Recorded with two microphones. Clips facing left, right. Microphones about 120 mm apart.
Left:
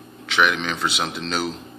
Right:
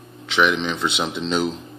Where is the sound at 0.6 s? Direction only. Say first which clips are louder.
Right 2 dB; 5° left (ahead or behind).